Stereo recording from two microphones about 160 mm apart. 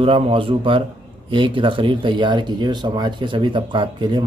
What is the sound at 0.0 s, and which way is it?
Speech, 35° right (ahead or behind).